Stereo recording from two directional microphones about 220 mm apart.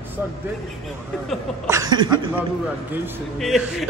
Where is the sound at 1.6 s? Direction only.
15° right (ahead or behind).